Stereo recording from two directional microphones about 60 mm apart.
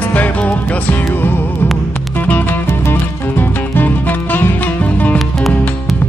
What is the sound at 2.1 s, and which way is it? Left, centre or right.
Music, left.